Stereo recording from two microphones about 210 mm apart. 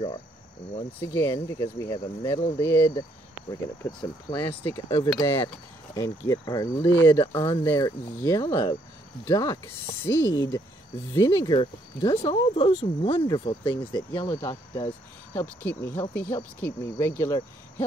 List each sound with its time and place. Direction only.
1.0 s speech: 15° left (ahead or behind)
2.6 s speech: 10° left (ahead or behind)
15.3 s speech: 10° left (ahead or behind)